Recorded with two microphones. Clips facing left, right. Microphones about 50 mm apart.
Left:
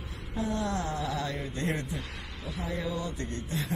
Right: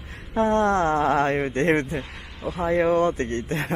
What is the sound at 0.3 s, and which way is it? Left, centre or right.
Speech, right.